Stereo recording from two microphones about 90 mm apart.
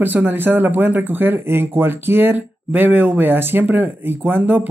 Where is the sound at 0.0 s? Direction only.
20° right (ahead or behind).